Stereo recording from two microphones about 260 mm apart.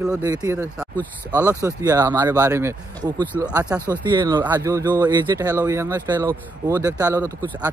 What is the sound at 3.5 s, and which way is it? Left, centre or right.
Speech, centre.